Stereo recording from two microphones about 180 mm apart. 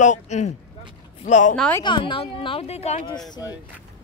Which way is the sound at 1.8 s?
25° left (ahead or behind).